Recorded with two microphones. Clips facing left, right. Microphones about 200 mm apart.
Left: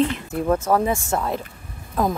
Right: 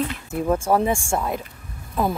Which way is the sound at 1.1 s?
10° right (ahead or behind).